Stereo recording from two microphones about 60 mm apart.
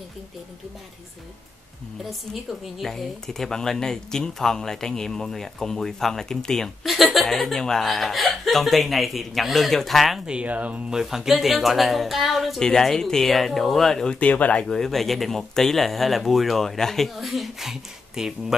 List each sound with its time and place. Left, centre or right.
2.6 s speech: centre
10.2 s speech: centre
10.9 s speech: centre
14.2 s speech: left
14.7 s speech: centre